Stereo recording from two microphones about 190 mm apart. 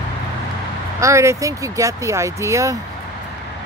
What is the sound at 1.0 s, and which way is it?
Speech, 15° right (ahead or behind).